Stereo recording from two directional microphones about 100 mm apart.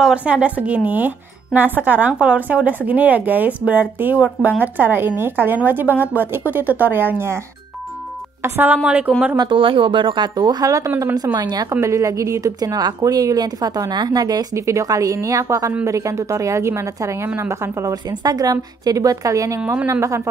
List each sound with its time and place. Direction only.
0.0 s a woman's voice: 10° right (ahead or behind)
8.4 s a woman's voice: 20° right (ahead or behind)
9.4 s a woman's voice: 60° right (ahead or behind); by 11.6 s 40° right (ahead or behind)
11.7 s a woman's voice: 30° right (ahead or behind)
18.2 s a woman's voice: 40° right (ahead or behind)